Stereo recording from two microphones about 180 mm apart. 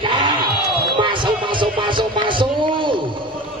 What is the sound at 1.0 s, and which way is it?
Music, 25° right (ahead or behind).